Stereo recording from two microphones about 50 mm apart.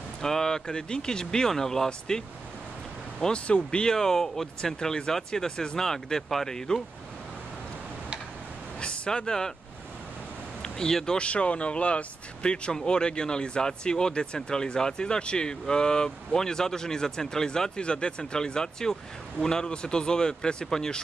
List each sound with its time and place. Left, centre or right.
0.2 s speech: centre
8.7 s a sound: centre
10.6 s speech: centre
11.1 s speech: left